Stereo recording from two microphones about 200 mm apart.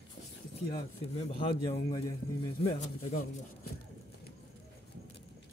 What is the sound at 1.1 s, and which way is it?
A man's voice, 25° left (ahead or behind).